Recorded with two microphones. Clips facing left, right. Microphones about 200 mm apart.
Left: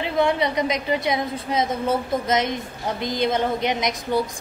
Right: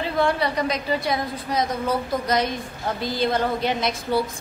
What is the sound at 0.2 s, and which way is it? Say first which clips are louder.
A woman's voice: left 2 dB; 20° left (ahead or behind).